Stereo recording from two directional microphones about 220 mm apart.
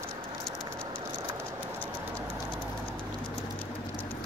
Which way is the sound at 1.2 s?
10° right (ahead or behind).